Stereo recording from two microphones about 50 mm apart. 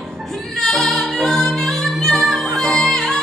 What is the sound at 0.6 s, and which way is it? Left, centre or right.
A capella, centre.